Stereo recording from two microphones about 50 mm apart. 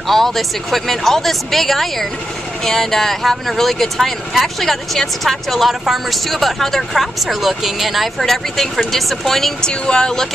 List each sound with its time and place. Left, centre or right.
0.1 s speech: centre
9.7 s speech: centre